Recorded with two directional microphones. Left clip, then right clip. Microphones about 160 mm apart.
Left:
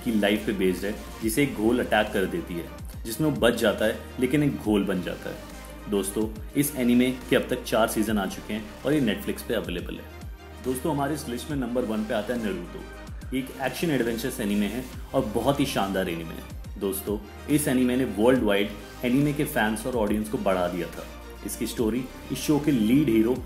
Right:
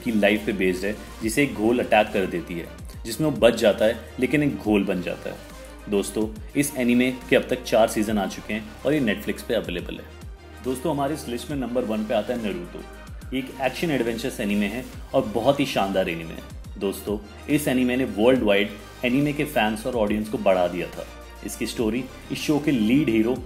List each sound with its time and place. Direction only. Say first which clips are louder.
0.0 s speech: right 4 dB; 25° right (ahead or behind)
13.3 s speech: right 3 dB; 15° right (ahead or behind)